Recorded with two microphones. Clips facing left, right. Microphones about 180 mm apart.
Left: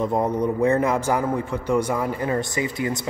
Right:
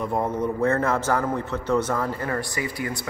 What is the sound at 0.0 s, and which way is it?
A man's voice, 20° left (ahead or behind).